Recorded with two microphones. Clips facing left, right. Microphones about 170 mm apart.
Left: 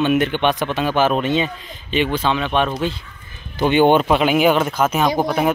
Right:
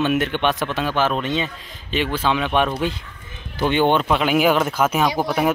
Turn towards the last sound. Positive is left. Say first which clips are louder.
# left 3 dB
turn(degrees=20)  # may be behind; listen again after turning